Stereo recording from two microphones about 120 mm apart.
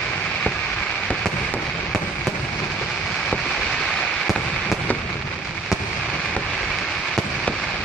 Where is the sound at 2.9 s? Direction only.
5° left (ahead or behind).